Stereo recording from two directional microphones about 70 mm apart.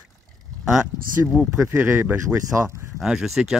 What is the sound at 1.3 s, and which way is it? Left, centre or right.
Speech, centre.